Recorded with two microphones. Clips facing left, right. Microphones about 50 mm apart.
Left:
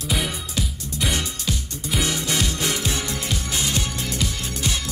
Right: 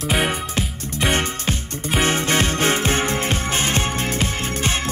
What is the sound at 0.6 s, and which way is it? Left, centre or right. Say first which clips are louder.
Music: right 3 dB; right.